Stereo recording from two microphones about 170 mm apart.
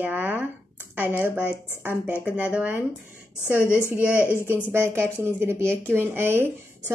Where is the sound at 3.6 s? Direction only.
15° left (ahead or behind).